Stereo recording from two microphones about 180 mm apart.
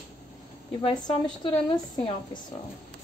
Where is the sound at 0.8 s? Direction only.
25° left (ahead or behind).